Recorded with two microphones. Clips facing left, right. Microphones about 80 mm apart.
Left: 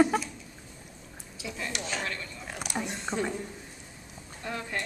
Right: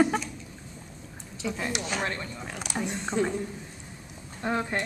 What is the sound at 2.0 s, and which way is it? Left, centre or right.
Speech, right.